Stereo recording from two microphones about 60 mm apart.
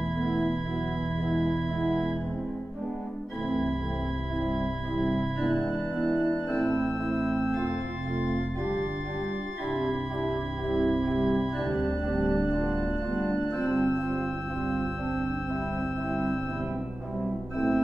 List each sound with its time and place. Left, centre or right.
0.2 s music: centre
4.5 s organ: centre
5.5 s organ: centre
6.5 s organ: centre
9.8 s organ: centre
11.8 s organ: centre
17.6 s organ: centre